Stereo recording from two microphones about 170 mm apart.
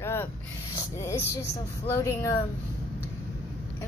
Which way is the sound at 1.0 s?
20° left (ahead or behind).